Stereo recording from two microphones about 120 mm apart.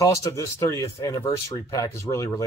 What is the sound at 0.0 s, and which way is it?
Speech, 25° left (ahead or behind).